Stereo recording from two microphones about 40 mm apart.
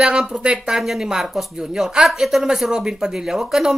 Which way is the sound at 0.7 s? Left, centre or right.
Centre.